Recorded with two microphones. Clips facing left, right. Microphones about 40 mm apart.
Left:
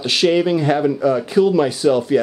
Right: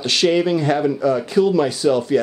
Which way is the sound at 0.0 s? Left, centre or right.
Centre.